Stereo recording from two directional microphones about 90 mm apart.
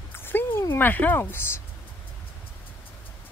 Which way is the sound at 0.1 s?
25° left (ahead or behind).